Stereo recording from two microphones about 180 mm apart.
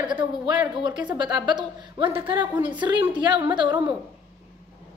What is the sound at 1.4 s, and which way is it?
A woman's voice, 25° right (ahead or behind).